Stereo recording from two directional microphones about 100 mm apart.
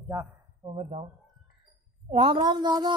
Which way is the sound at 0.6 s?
80° right.